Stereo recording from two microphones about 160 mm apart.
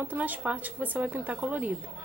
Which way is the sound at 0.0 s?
10° right (ahead or behind).